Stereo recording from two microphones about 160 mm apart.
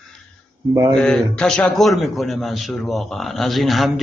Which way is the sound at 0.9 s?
5° left (ahead or behind).